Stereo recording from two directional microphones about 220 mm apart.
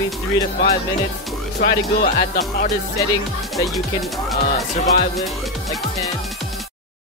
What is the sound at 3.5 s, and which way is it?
Speech, centre (ahead or behind).